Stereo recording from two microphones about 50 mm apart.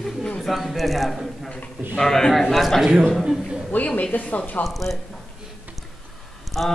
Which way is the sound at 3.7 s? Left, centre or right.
Left.